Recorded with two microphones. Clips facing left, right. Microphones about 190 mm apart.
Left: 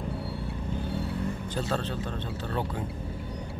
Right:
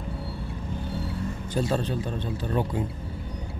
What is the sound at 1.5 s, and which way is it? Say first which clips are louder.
Speech: right 7 dB; 10° right (ahead or behind).